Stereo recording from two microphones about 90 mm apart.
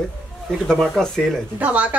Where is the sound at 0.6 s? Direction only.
5° left (ahead or behind).